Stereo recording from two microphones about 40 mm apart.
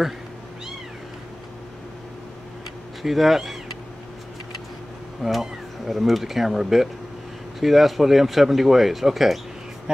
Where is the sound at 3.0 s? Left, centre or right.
Centre.